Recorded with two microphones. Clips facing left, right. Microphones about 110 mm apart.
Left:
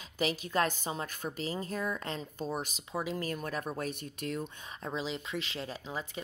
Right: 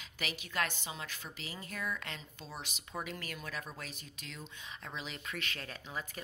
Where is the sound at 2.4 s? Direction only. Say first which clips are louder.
Left 12 dB; 50° left (ahead or behind).